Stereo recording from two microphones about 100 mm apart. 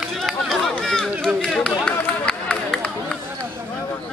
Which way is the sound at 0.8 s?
5° left (ahead or behind).